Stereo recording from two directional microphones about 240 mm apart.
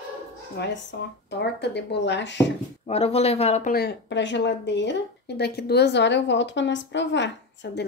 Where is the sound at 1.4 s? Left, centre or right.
Left.